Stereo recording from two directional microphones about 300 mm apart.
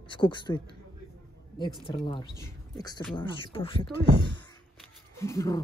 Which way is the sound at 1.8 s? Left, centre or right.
Centre.